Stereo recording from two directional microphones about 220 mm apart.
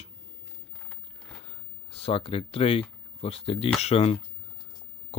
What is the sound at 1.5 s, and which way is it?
Speech, 25° left (ahead or behind).